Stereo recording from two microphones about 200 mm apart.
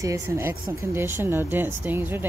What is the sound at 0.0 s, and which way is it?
Speech, 15° right (ahead or behind).